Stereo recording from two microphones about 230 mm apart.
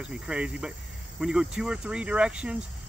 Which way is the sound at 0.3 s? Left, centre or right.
Centre.